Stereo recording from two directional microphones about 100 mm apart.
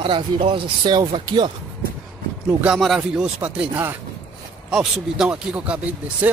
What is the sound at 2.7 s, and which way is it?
Speech, centre (ahead or behind).